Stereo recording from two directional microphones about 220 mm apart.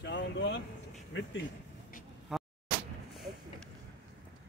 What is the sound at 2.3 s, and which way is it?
Artillery fire, centre (ahead or behind).